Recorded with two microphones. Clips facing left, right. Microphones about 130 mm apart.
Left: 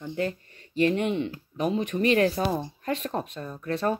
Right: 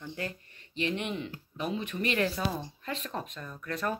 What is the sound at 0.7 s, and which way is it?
Speech, 40° left (ahead or behind).